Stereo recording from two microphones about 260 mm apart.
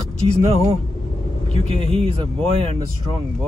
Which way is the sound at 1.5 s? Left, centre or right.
Right.